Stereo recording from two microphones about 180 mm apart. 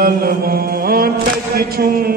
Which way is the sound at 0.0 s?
55° right (ahead or behind).